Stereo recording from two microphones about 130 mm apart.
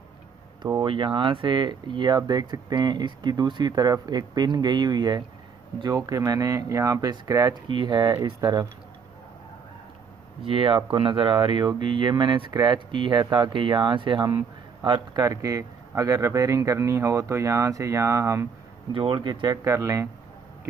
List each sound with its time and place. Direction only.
0.6 s speech: 35° right (ahead or behind)
10.4 s speech: 40° right (ahead or behind); by 18.5 s 20° right (ahead or behind)
18.9 s speech: 40° right (ahead or behind)
19.6 s speech: 25° right (ahead or behind)